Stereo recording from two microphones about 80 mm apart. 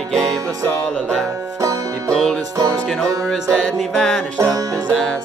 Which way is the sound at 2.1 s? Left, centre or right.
Centre.